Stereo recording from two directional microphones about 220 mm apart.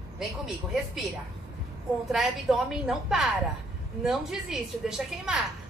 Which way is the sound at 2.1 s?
Centre (ahead or behind).